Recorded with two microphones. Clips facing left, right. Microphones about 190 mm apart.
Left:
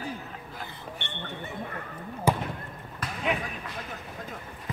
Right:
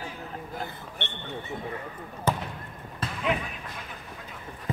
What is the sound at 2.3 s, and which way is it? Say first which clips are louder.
Basketball bounce: left 2 dB; 10° left (ahead or behind).